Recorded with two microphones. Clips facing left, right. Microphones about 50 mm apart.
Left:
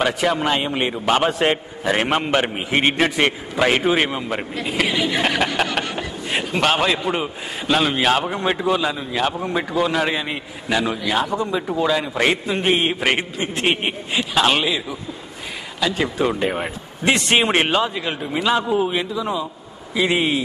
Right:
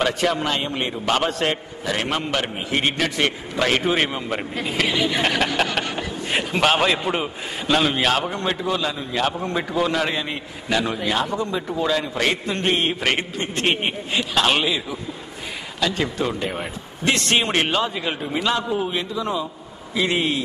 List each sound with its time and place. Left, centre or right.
0.0 s a man's voice: centre
17.6 s a man's voice: centre